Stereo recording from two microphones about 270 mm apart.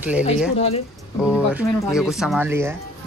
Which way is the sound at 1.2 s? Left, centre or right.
Centre.